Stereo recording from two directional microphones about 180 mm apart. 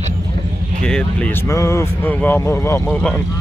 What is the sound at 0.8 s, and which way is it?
Speech, 5° left (ahead or behind).